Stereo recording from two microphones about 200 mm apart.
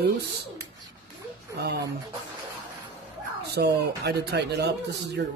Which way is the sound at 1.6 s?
55° right (ahead or behind).